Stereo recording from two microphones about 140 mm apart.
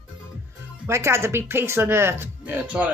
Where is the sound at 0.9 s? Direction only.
20° right (ahead or behind).